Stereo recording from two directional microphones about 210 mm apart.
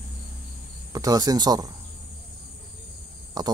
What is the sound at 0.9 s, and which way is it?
Speech, 15° right (ahead or behind).